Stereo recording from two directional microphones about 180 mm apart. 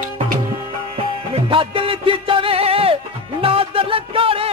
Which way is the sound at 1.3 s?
30° right (ahead or behind).